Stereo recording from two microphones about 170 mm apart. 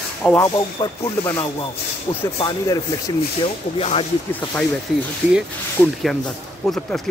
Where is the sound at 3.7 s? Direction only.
35° left (ahead or behind).